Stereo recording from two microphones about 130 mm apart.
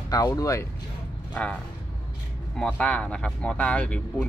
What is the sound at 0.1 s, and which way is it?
Speech, 30° left (ahead or behind).